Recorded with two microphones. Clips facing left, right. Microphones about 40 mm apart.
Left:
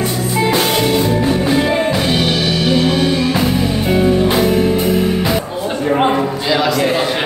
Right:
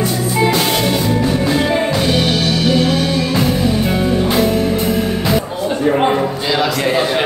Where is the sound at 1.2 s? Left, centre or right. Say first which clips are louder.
Left 1 dB; centre.